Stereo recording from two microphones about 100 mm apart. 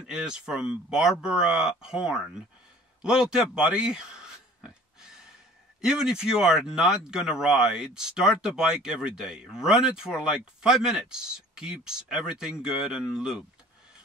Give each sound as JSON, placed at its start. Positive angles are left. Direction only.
{"t": 0.0, "sound": "speech", "side_deg": -5}
{"t": 3.0, "sound": "a sound", "side_deg": -10}
{"t": 5.8, "sound": "speech", "side_deg": -5}